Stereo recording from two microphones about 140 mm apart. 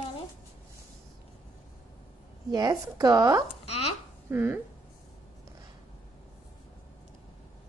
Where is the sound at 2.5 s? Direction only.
25° right (ahead or behind).